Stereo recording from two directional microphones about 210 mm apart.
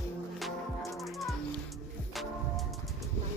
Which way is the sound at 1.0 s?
Centre (ahead or behind).